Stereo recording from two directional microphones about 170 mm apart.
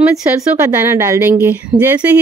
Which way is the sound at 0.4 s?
15° right (ahead or behind).